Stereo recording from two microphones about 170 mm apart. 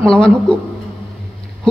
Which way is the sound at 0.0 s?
5° left (ahead or behind).